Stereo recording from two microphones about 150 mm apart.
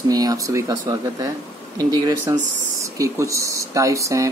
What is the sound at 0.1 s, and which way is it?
Speech, 25° right (ahead or behind).